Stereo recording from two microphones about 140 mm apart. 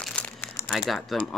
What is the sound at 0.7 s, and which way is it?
Speech, centre (ahead or behind).